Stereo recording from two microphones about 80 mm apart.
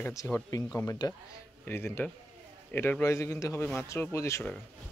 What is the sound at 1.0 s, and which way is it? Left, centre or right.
Speech, left.